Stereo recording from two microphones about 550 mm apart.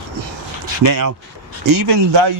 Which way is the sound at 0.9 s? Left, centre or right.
Right.